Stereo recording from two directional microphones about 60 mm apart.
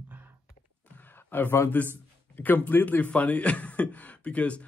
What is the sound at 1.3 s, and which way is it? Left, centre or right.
A man's voice, left.